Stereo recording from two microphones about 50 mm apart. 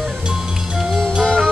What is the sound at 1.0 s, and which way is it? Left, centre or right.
Music, centre.